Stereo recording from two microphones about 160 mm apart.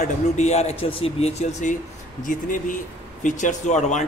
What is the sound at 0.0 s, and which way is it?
Speech, 45° left (ahead or behind).